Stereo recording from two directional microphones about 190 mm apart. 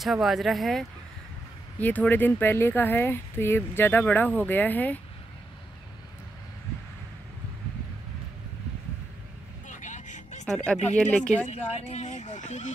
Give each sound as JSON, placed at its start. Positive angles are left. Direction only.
{"t": 0.0, "sound": "speech", "side_deg": 0}
{"t": 9.7, "sound": "vehicle", "side_deg": 40}
{"t": 10.4, "sound": "speech", "side_deg": 5}
{"t": 11.4, "sound": "speech", "side_deg": 35}